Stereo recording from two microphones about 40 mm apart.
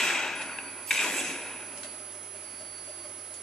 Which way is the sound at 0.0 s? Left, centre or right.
Centre.